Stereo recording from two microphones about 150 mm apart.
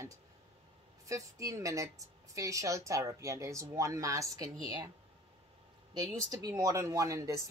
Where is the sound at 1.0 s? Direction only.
20° right (ahead or behind).